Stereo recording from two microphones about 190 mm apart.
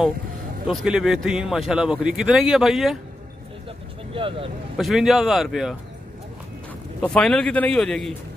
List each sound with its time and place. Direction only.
0.7 s speech: centre (ahead or behind)
4.1 s speech: 30° right (ahead or behind)
4.7 s speech: centre (ahead or behind)
7.0 s speech: 5° left (ahead or behind)